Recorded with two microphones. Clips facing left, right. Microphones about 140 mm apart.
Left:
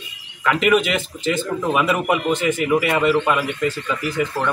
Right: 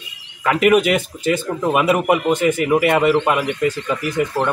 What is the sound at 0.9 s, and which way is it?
Speech, 10° right (ahead or behind).